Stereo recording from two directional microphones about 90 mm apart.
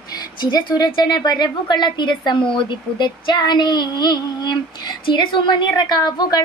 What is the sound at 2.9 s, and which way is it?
Female singing, 55° left (ahead or behind).